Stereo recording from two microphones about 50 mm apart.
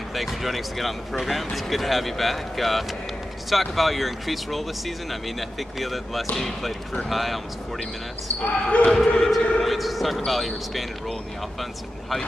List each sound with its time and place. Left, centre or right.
0.1 s speech: centre
8.4 s speech: left
8.9 s speech: centre